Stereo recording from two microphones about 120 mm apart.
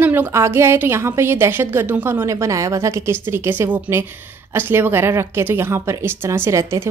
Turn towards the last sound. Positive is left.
turn(degrees=-25)  # may be behind; listen again after turning